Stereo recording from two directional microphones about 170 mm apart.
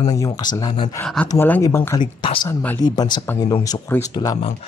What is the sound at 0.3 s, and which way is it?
Speech, 25° left (ahead or behind).